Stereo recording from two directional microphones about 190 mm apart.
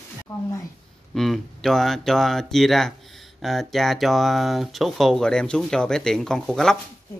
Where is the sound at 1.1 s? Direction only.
Centre (ahead or behind).